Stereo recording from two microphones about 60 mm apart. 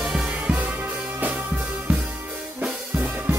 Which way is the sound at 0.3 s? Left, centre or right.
Right.